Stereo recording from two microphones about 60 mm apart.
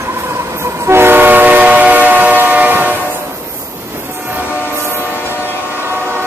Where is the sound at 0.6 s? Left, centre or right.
Right.